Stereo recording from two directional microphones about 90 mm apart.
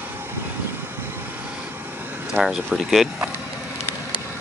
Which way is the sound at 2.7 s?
5° right (ahead or behind).